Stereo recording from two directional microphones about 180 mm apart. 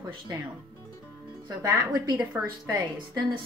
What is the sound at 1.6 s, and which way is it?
Speech, 20° right (ahead or behind).